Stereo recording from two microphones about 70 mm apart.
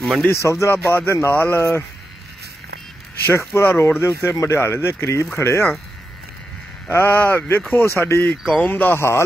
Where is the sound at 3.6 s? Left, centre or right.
Left.